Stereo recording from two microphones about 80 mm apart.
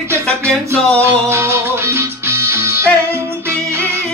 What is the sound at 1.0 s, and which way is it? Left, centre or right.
Music, right.